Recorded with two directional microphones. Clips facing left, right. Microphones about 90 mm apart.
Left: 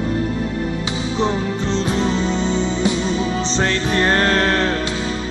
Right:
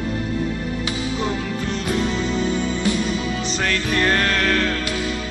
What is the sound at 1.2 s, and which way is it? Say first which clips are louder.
Music: left 4 dB; 25° left (ahead or behind).